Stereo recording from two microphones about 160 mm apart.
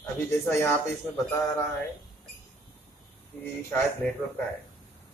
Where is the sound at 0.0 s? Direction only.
15° left (ahead or behind).